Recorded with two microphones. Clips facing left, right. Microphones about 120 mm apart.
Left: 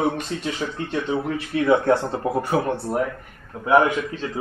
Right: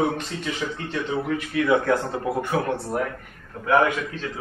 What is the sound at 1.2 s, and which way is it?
A man's voice, 30° left (ahead or behind).